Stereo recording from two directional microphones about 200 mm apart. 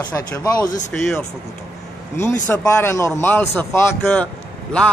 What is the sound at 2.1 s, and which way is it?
A man's voice, 15° left (ahead or behind).